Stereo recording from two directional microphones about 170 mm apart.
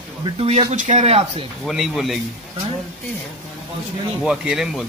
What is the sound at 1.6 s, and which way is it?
Speech, centre (ahead or behind).